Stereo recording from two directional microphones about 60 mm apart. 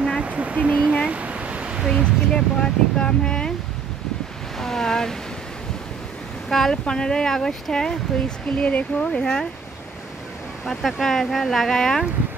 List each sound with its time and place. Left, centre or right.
0.2 s a sound: right
1.9 s speech: centre
4.6 s speech: centre
6.5 s speech: centre
10.6 s speech: centre